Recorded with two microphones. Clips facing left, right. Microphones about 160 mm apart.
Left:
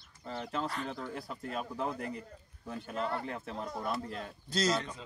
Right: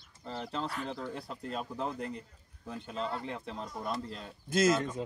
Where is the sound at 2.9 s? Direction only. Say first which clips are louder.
Left 1 dB; 60° left (ahead or behind).